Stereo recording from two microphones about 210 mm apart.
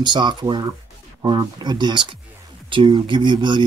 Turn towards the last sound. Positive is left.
turn(degrees=-20)  # may be behind; listen again after turning